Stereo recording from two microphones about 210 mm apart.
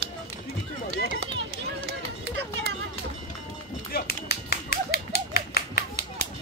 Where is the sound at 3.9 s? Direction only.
45° left (ahead or behind).